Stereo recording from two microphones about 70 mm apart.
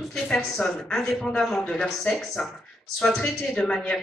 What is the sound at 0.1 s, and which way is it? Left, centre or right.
Speech, centre.